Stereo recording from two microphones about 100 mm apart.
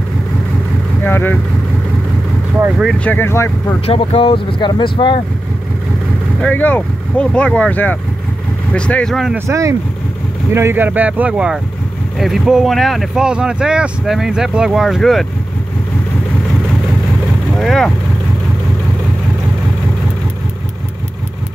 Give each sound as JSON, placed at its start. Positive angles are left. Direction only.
{"t": 1.0, "sound": "speech", "side_deg": 20}
{"t": 3.0, "sound": "speech", "side_deg": 20}
{"t": 3.8, "sound": "speech", "side_deg": 70}
{"t": 6.4, "sound": "speech", "side_deg": 15}
{"t": 9.5, "sound": "speech", "side_deg": -30}
{"t": 17.6, "sound": "speech", "side_deg": 5}